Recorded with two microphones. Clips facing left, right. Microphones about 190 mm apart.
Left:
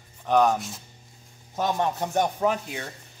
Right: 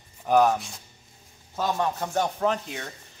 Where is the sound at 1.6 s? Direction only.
20° left (ahead or behind).